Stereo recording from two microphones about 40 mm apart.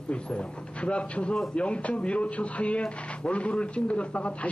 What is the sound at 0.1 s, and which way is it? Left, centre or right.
A man's voice, left.